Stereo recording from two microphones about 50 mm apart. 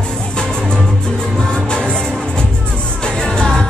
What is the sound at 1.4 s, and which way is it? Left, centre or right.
Music, centre.